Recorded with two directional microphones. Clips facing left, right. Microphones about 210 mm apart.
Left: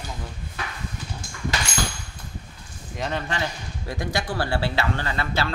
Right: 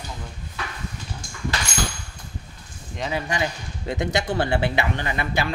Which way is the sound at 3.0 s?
10° right (ahead or behind).